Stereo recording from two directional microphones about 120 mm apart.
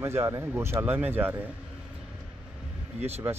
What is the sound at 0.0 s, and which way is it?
Speech, 25° right (ahead or behind).